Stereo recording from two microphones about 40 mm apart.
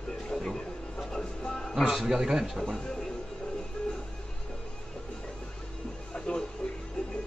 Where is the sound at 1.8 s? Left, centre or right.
Centre.